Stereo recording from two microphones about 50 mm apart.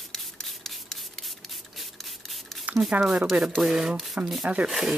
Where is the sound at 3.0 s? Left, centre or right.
Centre.